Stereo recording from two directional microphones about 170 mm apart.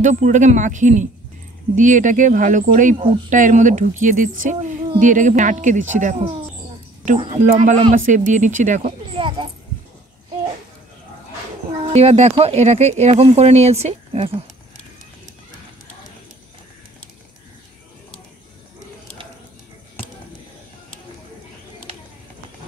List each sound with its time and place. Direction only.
0.0 s speech: 45° right (ahead or behind)
7.9 s speech: 50° right (ahead or behind)
9.1 s speech: 30° right (ahead or behind)
11.9 s speech: 40° right (ahead or behind)